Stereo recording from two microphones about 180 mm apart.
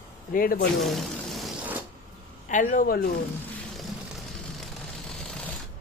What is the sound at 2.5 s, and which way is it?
Speech, 45° left (ahead or behind).